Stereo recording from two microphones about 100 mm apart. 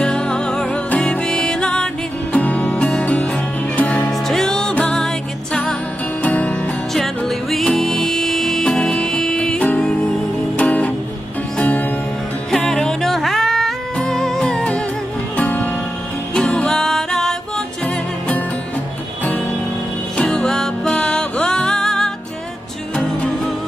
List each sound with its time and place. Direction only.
0.0 s music: 10° left (ahead or behind)
4.1 s music: 5° left (ahead or behind)
6.9 s music: centre (ahead or behind)
20.2 s music: 5° left (ahead or behind)